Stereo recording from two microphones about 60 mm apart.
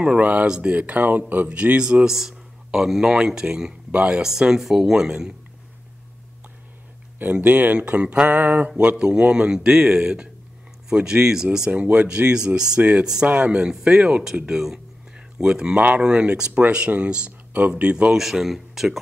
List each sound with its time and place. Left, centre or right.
0.0 s speech: right
4.2 s speech: centre
7.4 s speech: right
18.1 s speech: centre